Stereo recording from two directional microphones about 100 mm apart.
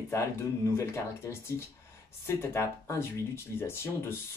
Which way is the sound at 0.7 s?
25° left (ahead or behind).